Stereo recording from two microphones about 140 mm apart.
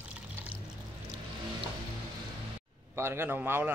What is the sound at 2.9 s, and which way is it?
Speech, 15° right (ahead or behind).